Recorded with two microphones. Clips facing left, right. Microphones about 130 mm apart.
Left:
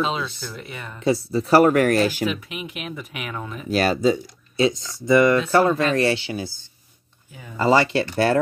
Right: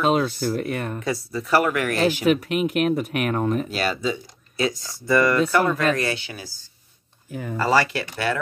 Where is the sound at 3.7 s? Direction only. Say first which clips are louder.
Left 6 dB; 40° left (ahead or behind).